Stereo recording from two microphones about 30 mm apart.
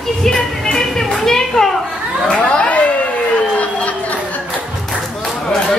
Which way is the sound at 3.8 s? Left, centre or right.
Left.